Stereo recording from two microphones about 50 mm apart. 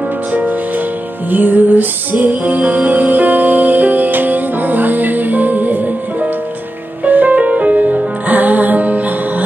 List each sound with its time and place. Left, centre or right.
0.3 s music: right
7.1 s music: right